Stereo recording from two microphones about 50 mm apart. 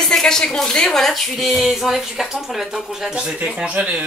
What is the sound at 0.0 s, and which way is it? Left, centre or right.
Speech, centre.